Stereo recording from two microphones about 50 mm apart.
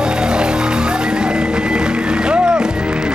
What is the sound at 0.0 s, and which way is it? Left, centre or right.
Music, centre.